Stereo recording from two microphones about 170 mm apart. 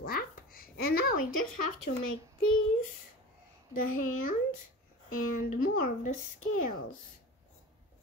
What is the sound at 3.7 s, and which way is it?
Speech, 55° left (ahead or behind).